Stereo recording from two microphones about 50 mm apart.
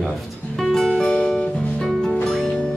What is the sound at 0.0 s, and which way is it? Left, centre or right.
Music, centre.